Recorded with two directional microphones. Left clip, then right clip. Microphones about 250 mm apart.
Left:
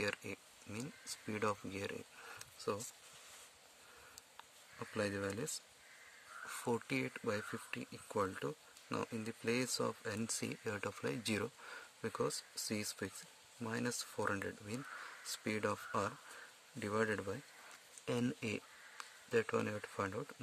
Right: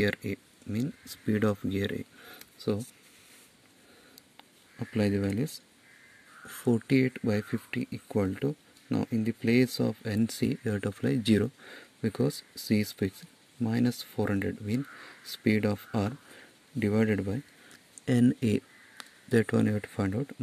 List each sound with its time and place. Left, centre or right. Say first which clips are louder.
0.0 s speech: right 11 dB; centre
4.9 s speech: right 10 dB; centre
6.9 s speech: right 12 dB; centre